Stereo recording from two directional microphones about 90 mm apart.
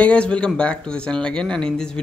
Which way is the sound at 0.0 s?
10° left (ahead or behind).